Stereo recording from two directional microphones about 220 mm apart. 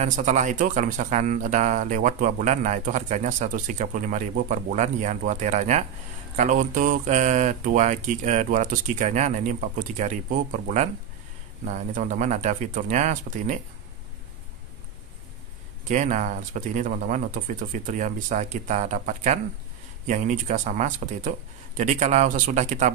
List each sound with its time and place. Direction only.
0.0 s speech: 35° right (ahead or behind)
15.9 s speech: 35° right (ahead or behind)